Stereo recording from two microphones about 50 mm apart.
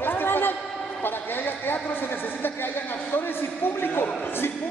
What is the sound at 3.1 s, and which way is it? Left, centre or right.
A woman's voice, left.